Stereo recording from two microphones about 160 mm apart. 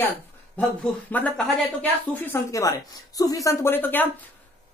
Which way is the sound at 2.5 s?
20° left (ahead or behind).